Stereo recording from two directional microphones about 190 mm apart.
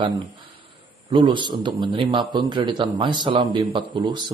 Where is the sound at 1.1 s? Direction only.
25° right (ahead or behind).